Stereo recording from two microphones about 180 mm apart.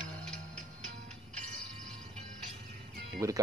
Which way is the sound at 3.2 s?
20° right (ahead or behind).